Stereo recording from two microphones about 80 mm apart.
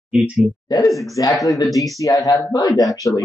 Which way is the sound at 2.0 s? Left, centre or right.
Left.